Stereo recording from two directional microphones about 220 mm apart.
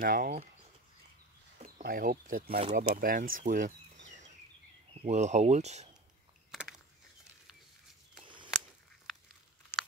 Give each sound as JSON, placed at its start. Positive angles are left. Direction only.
{"t": 0.0, "sound": "speech", "side_deg": -40}
{"t": 1.8, "sound": "speech", "side_deg": -40}
{"t": 4.9, "sound": "speech", "side_deg": -30}
{"t": 6.5, "sound": "a sound", "side_deg": -5}